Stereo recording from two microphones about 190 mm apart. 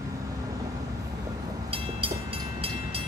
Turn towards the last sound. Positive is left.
turn(degrees=-30)  # may be behind; listen again after turning